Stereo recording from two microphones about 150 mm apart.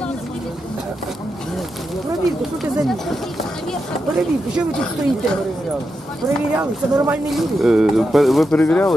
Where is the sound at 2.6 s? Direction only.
Centre (ahead or behind).